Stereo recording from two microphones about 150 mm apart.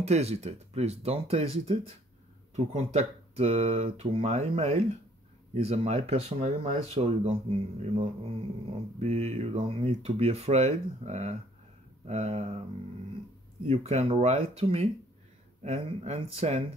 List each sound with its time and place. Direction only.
0.0 s speech: 45° right (ahead or behind)
13.7 s speech: 40° right (ahead or behind)